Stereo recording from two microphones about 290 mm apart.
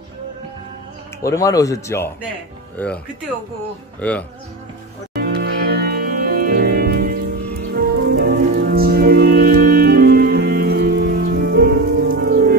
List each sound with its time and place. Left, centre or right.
1.2 s speech: centre
4.0 s speech: centre
5.1 s music: right